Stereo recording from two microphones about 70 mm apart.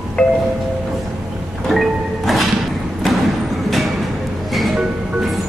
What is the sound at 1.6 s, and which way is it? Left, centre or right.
Music, centre.